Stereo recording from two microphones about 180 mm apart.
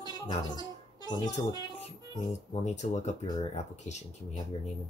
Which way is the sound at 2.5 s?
40° left (ahead or behind).